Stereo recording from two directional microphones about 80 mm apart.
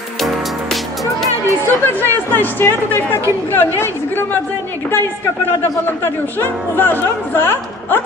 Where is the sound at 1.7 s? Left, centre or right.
Left.